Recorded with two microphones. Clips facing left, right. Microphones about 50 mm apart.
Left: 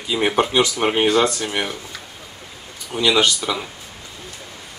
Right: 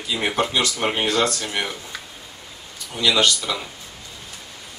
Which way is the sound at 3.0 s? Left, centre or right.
Centre.